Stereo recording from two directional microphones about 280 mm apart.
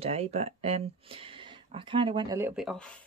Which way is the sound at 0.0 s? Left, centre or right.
Right.